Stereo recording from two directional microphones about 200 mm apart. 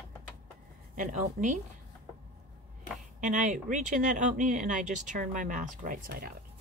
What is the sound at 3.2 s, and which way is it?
Speech, 40° right (ahead or behind).